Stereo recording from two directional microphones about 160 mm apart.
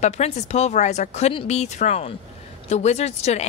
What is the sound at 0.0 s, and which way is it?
Speech, 45° left (ahead or behind).